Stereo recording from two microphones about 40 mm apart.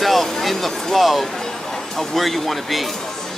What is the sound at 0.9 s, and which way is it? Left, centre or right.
Speech, centre.